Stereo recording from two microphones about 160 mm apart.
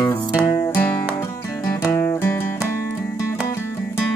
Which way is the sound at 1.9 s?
15° left (ahead or behind).